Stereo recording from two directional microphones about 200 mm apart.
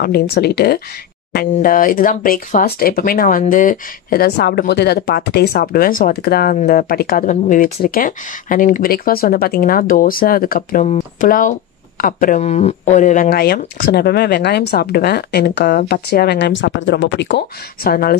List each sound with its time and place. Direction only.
0.0 s speech: 50° left (ahead or behind)
17.8 s speech: 50° left (ahead or behind)